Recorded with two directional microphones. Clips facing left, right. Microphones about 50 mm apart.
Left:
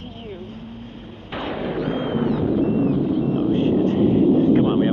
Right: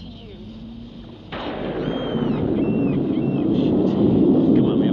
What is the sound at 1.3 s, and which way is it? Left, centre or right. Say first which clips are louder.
Artillery fire: left 1 dB; left.